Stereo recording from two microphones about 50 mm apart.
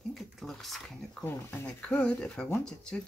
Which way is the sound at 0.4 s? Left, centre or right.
Centre.